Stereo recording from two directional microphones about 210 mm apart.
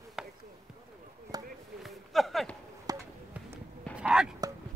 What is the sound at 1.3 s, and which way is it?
Chop, 20° right (ahead or behind).